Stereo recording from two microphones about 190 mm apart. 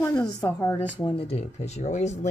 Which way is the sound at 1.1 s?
30° left (ahead or behind).